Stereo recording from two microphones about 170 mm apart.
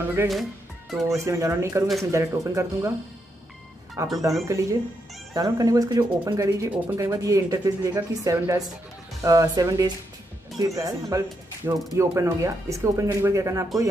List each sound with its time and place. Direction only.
0.3 s speech: centre (ahead or behind)
1.0 s speech: 15° right (ahead or behind)
4.0 s speech: 15° right (ahead or behind)